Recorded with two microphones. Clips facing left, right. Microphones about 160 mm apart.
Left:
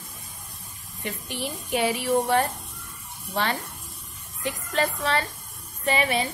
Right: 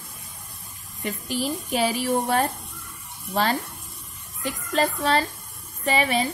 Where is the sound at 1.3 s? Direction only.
35° right (ahead or behind).